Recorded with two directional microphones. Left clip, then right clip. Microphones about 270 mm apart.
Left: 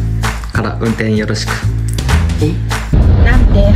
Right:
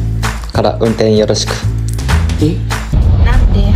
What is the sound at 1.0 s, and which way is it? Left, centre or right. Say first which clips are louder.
Speech: right 11 dB; right.